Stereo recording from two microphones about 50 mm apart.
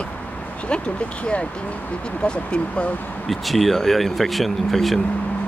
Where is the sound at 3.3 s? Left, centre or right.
Centre.